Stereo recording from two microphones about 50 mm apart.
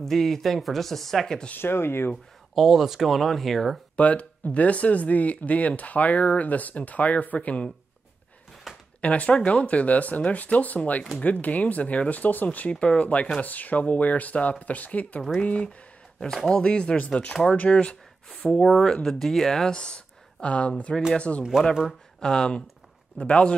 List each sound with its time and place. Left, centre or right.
0.0 s speech: centre
1.6 s speech: left
2.5 s speech: centre
3.9 s speech: left
8.7 s a sound: centre
9.0 s speech: left
12.7 s speech: left; by 19.7 s centre
19.7 s speech: centre